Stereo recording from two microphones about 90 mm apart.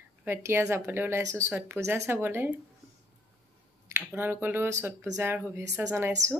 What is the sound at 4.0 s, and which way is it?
Speech, 20° right (ahead or behind).